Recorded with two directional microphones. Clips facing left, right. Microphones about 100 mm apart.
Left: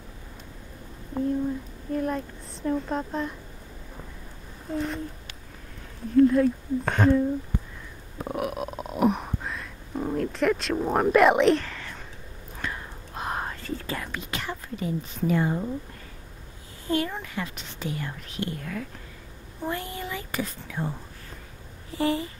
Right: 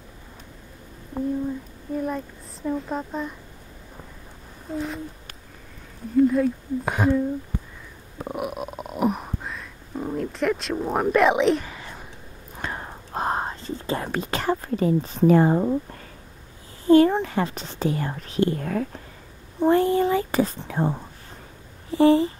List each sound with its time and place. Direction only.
2.0 s a child's voice: 5° right (ahead or behind)
4.6 s a child's voice: centre (ahead or behind)
6.1 s speech: 5° right (ahead or behind)
8.2 s music: 5° right (ahead or behind)
11.1 s a child's voice: centre (ahead or behind)
11.6 s whispering: 15° right (ahead or behind)
12.6 s whispering: 40° right (ahead or behind)
14.0 s speech: 40° right (ahead or behind)
16.8 s speech: 35° right (ahead or behind)
19.6 s speech: 35° right (ahead or behind)